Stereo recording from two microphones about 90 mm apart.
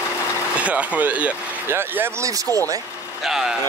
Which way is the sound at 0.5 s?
15° right (ahead or behind).